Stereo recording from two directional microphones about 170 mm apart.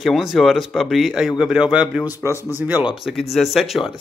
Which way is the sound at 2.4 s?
10° right (ahead or behind).